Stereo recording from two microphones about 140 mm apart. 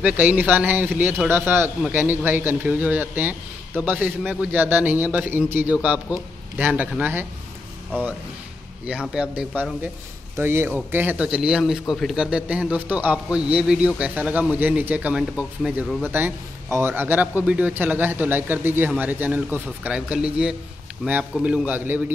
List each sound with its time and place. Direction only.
0.0 s a man's voice: 10° right (ahead or behind)
9.1 s speech: 5° right (ahead or behind)
10.3 s a man's voice: 15° right (ahead or behind); by 16.1 s centre (ahead or behind)
16.1 s a man's voice: 15° right (ahead or behind)